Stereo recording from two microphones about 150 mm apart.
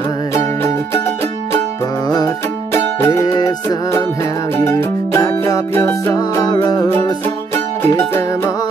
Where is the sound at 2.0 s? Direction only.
25° left (ahead or behind).